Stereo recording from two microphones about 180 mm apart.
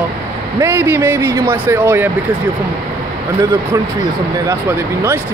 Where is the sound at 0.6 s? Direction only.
15° right (ahead or behind).